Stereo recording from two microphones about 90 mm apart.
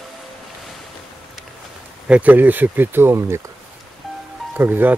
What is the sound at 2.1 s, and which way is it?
Speech, 20° right (ahead or behind).